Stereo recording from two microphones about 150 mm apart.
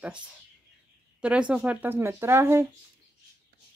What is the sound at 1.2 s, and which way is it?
Speech, 10° right (ahead or behind).